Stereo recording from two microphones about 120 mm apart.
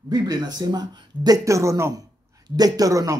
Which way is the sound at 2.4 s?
35° right (ahead or behind).